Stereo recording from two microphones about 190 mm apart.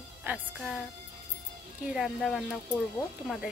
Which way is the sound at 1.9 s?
Centre (ahead or behind).